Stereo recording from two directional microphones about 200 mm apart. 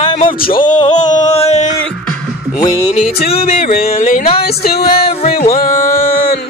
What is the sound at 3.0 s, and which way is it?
Music, 50° left (ahead or behind).